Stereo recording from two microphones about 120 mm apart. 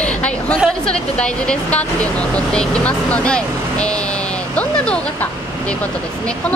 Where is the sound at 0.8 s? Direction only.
10° left (ahead or behind).